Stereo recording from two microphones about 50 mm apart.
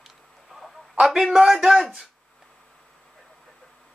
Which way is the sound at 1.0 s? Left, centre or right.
Centre.